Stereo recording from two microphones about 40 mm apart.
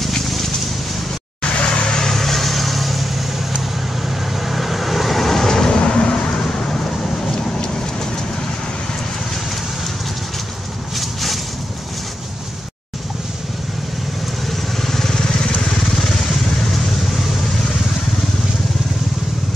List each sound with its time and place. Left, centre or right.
1.4 s vehicle: left; by 3.3 s centre
4.4 s vehicle: centre
5.8 s vehicle: left
11.0 s a sound: centre
14.5 s vehicle: centre